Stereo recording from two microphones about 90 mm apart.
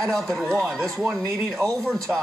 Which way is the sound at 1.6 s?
40° right (ahead or behind).